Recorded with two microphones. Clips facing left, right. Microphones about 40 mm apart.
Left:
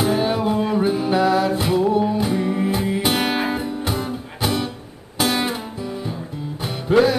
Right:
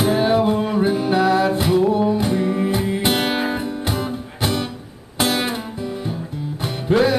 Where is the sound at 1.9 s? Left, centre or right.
Centre.